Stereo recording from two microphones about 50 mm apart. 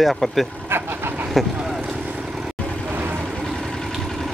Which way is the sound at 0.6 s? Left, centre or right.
Right.